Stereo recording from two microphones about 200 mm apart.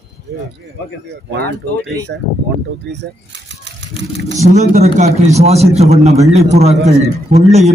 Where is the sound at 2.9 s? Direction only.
60° right (ahead or behind).